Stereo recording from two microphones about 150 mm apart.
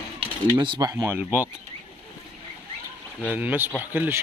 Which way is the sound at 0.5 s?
30° right (ahead or behind).